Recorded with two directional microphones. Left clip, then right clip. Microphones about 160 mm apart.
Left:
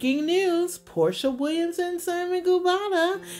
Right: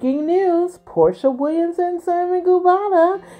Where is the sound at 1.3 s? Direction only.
30° left (ahead or behind).